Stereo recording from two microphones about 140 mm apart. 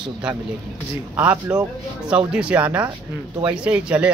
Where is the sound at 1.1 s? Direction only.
10° right (ahead or behind).